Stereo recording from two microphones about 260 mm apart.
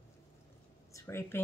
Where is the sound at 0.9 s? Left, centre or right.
Centre.